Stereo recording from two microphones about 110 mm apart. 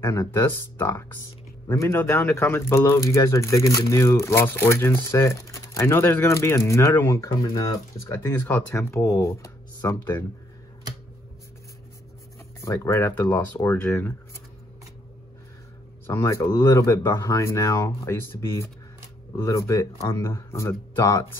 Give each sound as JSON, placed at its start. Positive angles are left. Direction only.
{"t": 0.0, "sound": "speech", "side_deg": 30}
{"t": 12.6, "sound": "speech", "side_deg": 25}
{"t": 16.1, "sound": "speech", "side_deg": 25}